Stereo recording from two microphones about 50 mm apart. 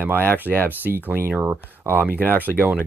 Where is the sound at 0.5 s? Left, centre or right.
Right.